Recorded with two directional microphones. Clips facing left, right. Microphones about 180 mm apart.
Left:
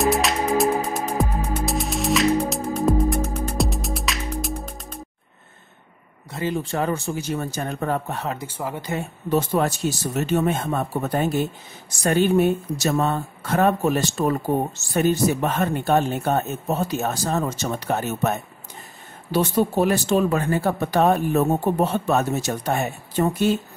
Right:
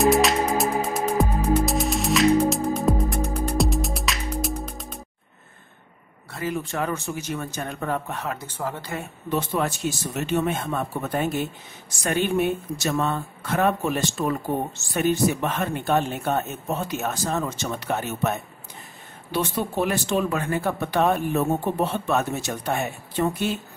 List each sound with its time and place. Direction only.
0.0 s music: centre (ahead or behind)
6.3 s speech: 30° left (ahead or behind)
8.4 s speech: 10° left (ahead or behind)
9.3 s speech: 40° left (ahead or behind)
19.3 s speech: 40° left (ahead or behind)